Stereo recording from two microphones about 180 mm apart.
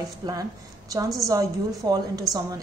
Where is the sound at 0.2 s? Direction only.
20° right (ahead or behind).